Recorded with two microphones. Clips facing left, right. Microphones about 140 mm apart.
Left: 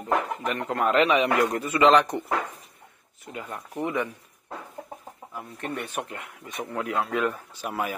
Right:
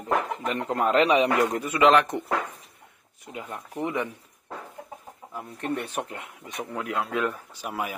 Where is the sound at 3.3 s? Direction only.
15° right (ahead or behind).